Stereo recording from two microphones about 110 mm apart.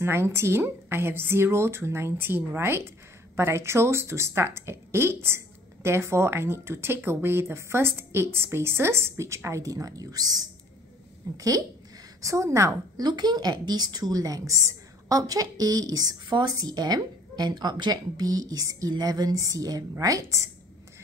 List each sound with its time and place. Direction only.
0.0 s a woman's voice: 20° right (ahead or behind)
13.0 s a woman's voice: 40° right (ahead or behind)